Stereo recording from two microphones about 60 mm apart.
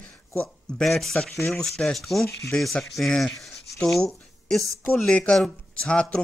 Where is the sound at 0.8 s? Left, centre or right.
Centre.